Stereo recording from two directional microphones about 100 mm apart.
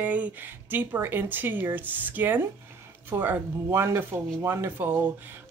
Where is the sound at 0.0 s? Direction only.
15° right (ahead or behind).